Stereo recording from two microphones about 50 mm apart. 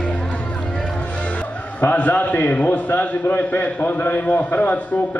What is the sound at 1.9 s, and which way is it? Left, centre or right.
A man's voice, left.